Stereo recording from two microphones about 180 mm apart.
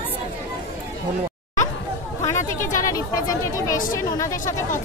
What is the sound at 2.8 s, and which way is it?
Speech, 20° left (ahead or behind).